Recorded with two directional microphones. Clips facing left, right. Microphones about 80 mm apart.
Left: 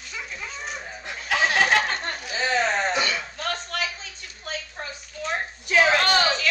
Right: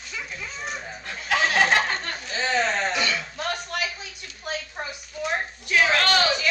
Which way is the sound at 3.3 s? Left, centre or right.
Centre.